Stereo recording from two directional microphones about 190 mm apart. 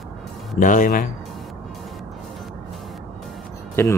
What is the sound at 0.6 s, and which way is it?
Speech, 45° left (ahead or behind).